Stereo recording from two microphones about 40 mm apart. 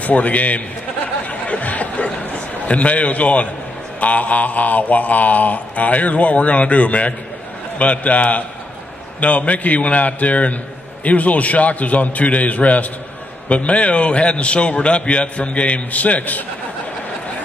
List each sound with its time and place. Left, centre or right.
0.0 s mantra: left
1.2 s a sound: left
2.6 s mantra: left